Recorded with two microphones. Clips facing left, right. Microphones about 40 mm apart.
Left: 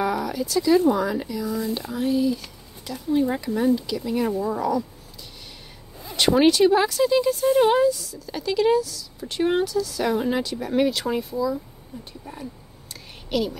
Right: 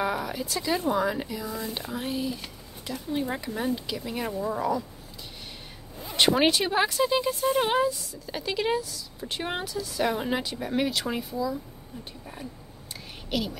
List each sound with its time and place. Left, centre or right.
0.0 s speech: centre
2.1 s speech: right
2.9 s speech: centre
6.4 s speech: centre
7.6 s speech: centre
9.3 s speech: centre
10.7 s speech: centre
13.3 s speech: centre